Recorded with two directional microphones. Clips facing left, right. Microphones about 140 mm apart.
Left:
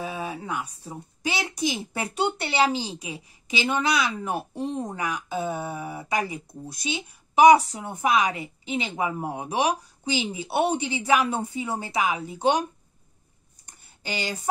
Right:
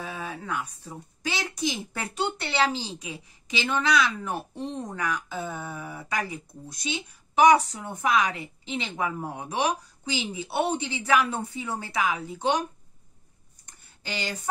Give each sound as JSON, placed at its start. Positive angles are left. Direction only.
{"t": 0.0, "sound": "a woman's voice", "side_deg": 15}
{"t": 14.0, "sound": "a woman's voice", "side_deg": 15}